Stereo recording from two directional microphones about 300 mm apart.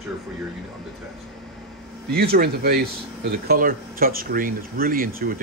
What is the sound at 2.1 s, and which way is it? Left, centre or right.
Speech, right.